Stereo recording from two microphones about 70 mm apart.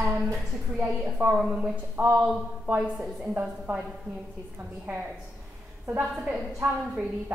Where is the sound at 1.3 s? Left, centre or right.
Centre.